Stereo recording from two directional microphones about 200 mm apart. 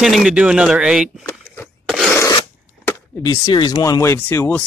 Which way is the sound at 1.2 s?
10° left (ahead or behind).